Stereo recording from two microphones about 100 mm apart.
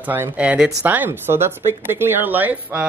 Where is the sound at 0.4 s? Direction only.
10° right (ahead or behind).